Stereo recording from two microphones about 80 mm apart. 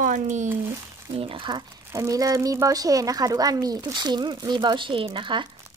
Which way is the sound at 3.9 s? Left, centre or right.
Right.